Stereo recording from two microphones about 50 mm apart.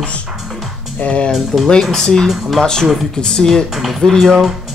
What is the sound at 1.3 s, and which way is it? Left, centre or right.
Speech, centre.